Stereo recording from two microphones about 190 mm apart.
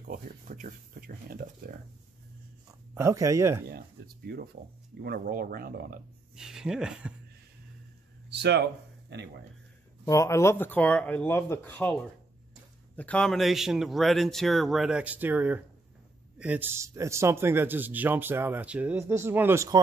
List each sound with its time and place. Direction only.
0.1 s speech: 40° right (ahead or behind)
2.9 s a man's voice: 15° right (ahead or behind)
3.6 s a sound: 55° right (ahead or behind)
5.0 s speech: 55° right (ahead or behind)
6.3 s a man's voice: 5° right (ahead or behind)
8.3 s speech: 60° right (ahead or behind)
10.0 s a man's voice: 15° left (ahead or behind); by 19.8 s 15° right (ahead or behind)